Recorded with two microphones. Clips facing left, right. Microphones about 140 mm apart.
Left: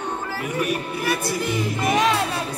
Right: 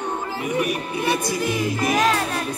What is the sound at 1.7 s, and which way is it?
Speech, centre (ahead or behind).